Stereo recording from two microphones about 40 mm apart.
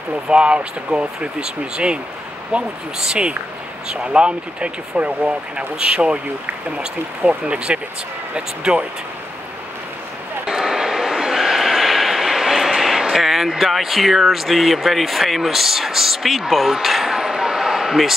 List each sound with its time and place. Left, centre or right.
0.3 s speech: right
3.9 s speech: right
7.2 s speech: right
10.4 s a sound: centre